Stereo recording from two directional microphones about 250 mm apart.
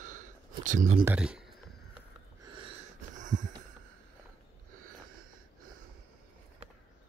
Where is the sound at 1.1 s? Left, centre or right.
Centre.